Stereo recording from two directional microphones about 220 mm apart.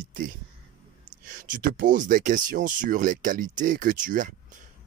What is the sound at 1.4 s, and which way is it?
Speech, 40° right (ahead or behind).